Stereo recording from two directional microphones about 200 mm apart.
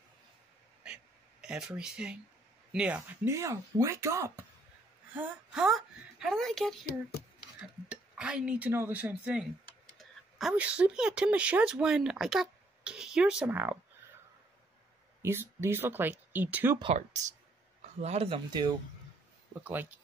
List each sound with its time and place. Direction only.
0.8 s a sound: 5° right (ahead or behind)
2.7 s speech: 5° right (ahead or behind)
7.9 s speech: 5° right (ahead or behind)
15.2 s speech: 10° right (ahead or behind)
16.7 s speech: 30° right (ahead or behind)
19.6 s speech: 10° right (ahead or behind)